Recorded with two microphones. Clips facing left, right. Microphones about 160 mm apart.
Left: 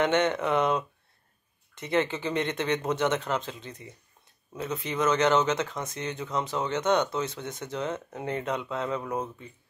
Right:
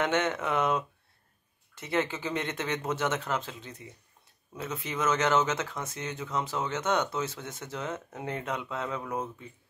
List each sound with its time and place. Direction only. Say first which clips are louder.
0.0 s speech: left 4 dB; 5° right (ahead or behind)